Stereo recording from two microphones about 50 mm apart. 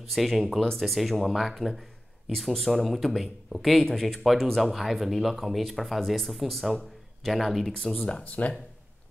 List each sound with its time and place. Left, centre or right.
0.0 s speech: centre
8.1 s speech: left